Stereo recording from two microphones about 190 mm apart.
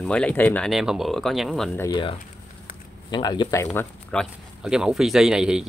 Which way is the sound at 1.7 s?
15° left (ahead or behind).